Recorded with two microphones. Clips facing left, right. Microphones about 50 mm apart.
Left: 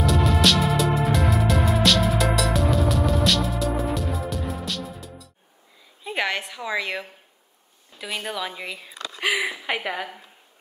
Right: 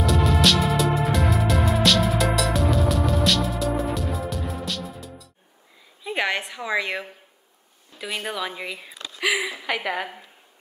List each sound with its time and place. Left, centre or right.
0.0 s music: centre
6.0 s a sound: centre
8.0 s speech: centre
9.1 s speech: left
9.8 s speech: centre